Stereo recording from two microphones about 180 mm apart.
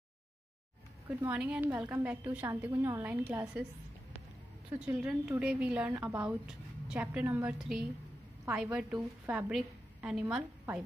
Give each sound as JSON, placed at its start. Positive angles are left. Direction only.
{"t": 1.0, "sound": "a woman's voice", "side_deg": -10}
{"t": 4.7, "sound": "a woman's voice", "side_deg": -5}
{"t": 9.5, "sound": "a woman's voice", "side_deg": -5}